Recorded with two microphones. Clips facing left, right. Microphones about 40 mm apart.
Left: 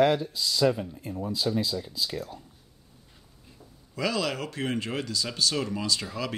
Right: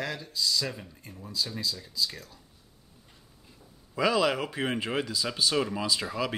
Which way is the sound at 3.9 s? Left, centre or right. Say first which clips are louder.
Right 4 dB; centre.